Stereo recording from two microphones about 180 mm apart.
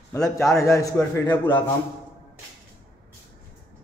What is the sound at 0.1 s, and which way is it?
A man's voice, 15° left (ahead or behind).